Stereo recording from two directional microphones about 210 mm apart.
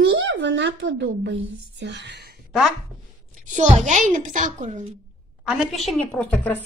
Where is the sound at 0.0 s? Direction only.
60° right (ahead or behind).